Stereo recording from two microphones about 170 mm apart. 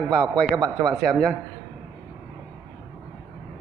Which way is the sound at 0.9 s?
Centre (ahead or behind).